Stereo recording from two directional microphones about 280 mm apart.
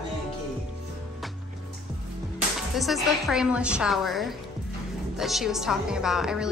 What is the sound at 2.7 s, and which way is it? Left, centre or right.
Speech, centre.